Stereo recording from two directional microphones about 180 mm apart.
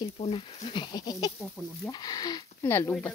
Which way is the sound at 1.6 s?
20° left (ahead or behind).